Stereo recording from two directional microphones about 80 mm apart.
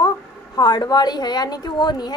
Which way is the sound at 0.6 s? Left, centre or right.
Left.